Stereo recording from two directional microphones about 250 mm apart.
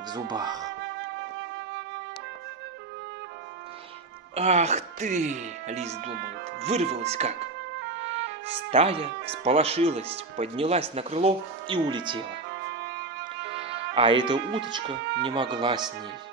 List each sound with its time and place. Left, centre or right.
0.1 s speech: centre
4.4 s speech: right
8.6 s speech: right
13.9 s speech: centre